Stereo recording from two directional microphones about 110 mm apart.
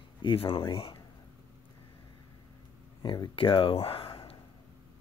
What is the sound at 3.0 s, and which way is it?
Speech, 45° left (ahead or behind).